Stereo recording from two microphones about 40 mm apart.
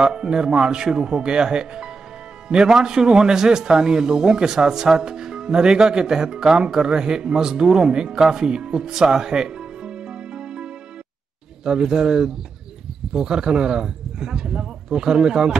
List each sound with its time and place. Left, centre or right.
0.0 s a man's voice: centre